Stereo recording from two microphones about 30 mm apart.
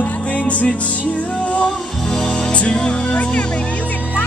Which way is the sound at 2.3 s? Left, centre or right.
Left.